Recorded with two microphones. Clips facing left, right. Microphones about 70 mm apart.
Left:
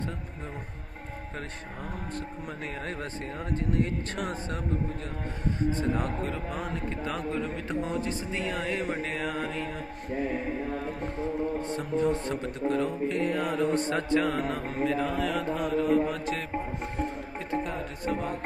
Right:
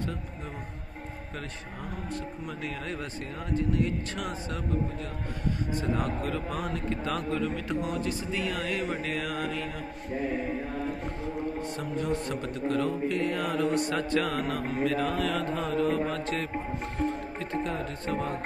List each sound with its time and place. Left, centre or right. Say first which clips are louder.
2.1 s a man's voice: even; left
5.6 s a man's voice: left 4 dB; left
6.2 s music: right 1 dB; left
11.6 s music: left 4 dB; left; by 16.4 s centre
17.0 s music: right 5 dB; left